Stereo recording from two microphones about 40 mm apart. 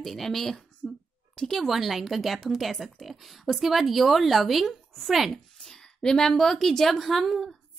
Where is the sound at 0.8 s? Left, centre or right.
Centre.